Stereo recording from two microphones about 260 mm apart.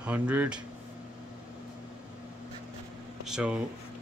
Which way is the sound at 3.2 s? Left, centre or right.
Centre.